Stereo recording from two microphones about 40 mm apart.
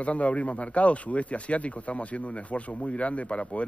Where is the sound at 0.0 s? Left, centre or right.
Left.